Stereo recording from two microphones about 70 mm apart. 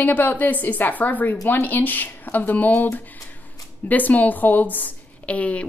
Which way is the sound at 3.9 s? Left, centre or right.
Left.